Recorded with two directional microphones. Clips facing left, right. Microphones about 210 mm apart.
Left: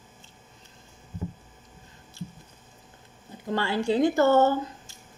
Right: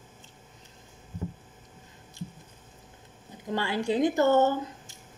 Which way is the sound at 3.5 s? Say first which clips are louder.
Left 2 dB; 15° right (ahead or behind).